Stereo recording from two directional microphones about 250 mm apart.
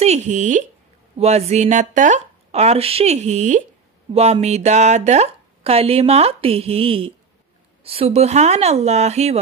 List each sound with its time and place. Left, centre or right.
0.0 s speech: right